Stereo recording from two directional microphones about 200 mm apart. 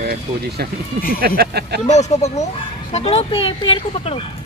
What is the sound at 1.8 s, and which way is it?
Speech, 35° left (ahead or behind).